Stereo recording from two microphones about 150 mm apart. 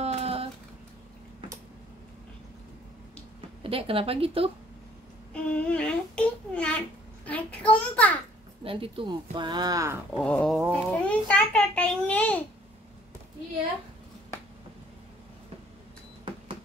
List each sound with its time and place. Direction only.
0.0 s a sound: 45° right (ahead or behind)
3.3 s a woman's voice: 40° right (ahead or behind)
5.3 s babbling: 10° left (ahead or behind)
7.2 s a child's voice: 10° left (ahead or behind)
8.6 s speech: 35° right (ahead or behind)
10.1 s a child's voice: 5° left (ahead or behind)